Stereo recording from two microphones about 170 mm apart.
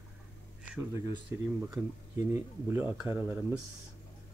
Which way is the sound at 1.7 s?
15° right (ahead or behind).